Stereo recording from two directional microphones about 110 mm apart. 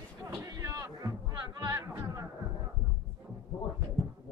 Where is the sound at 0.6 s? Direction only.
30° right (ahead or behind).